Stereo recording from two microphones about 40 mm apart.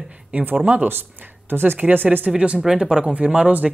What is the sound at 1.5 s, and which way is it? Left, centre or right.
Speech, right.